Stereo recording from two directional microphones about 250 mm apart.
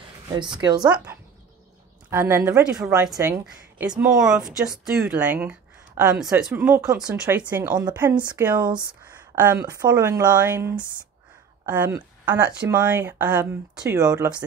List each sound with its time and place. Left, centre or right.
0.4 s a woman's voice: centre
0.8 s a woman's voice: centre